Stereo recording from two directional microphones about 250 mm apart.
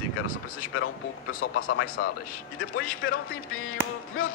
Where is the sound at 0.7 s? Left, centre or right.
Left.